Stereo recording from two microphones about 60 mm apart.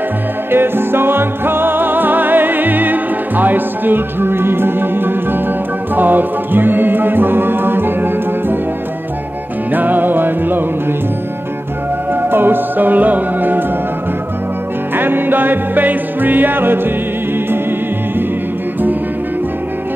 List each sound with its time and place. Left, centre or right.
0.5 s music: right
9.7 s music: right
12.1 s music: right
15.0 s music: right